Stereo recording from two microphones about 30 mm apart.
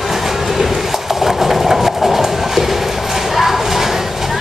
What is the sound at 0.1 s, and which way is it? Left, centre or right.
Train, centre.